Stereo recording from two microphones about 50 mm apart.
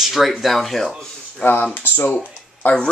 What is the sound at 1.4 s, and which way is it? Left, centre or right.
Speech, left.